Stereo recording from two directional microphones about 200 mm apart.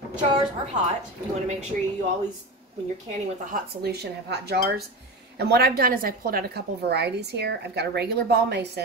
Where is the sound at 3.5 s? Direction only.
50° right (ahead or behind).